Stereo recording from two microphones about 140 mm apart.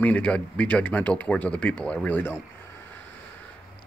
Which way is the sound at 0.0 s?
10° left (ahead or behind).